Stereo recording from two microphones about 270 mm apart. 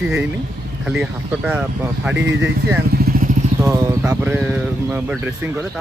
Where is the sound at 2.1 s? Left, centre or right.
Right.